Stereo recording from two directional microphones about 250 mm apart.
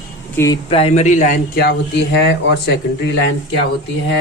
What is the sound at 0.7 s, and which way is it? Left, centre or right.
Speech, left.